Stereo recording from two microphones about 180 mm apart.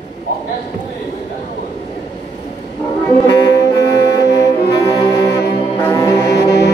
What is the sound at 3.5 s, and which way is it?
Music, 15° left (ahead or behind).